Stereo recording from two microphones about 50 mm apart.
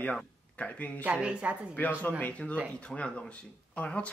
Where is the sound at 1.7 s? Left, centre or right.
Left.